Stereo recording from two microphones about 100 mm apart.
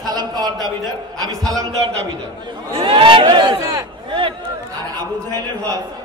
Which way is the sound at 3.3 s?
45° right (ahead or behind).